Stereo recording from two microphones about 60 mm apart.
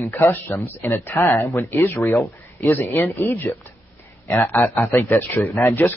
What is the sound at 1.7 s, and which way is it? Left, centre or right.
Speech, left.